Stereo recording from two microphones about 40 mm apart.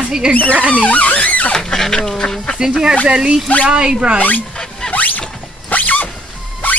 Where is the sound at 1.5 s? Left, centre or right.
Centre.